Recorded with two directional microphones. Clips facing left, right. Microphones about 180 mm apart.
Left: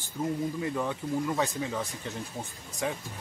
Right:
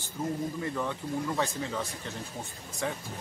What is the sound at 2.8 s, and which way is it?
Speech, 15° left (ahead or behind).